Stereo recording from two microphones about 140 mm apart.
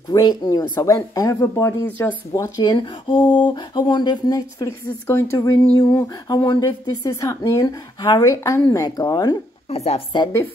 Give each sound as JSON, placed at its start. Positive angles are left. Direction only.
{"t": 0.1, "sound": "speech", "side_deg": 30}
{"t": 2.3, "sound": "speech", "side_deg": 25}
{"t": 9.7, "sound": "a woman's voice", "side_deg": 45}